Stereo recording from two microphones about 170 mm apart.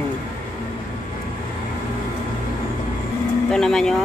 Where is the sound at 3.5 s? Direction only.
5° left (ahead or behind).